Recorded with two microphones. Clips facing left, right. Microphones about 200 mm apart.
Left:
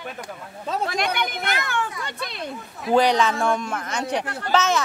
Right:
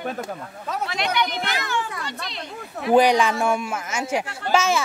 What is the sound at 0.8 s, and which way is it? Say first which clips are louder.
A woman's voice: right 1 dB; 50° left (ahead or behind).